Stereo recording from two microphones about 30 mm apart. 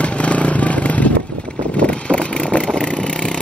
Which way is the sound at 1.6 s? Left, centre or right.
Left.